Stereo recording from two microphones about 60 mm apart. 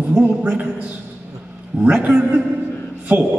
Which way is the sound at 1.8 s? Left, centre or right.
Centre.